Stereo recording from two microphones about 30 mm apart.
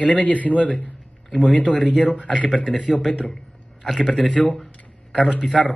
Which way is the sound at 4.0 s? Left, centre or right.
Left.